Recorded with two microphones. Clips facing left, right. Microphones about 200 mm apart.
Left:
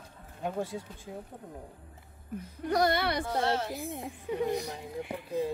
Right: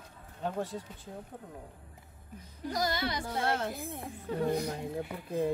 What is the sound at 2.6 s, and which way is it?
Speech, 60° left (ahead or behind).